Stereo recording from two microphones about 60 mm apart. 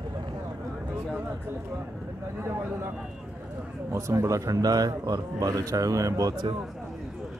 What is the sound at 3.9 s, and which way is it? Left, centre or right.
Speech, right.